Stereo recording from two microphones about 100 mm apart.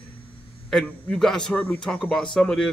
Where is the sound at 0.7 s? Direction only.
5° left (ahead or behind).